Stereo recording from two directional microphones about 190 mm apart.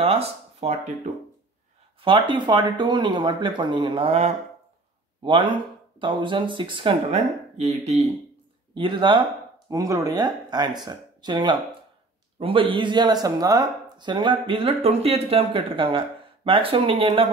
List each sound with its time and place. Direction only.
0.0 s speech: 30° right (ahead or behind)
2.0 s speech: 25° right (ahead or behind)
8.7 s speech: 25° right (ahead or behind)